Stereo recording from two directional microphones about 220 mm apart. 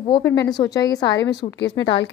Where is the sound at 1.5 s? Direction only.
55° left (ahead or behind).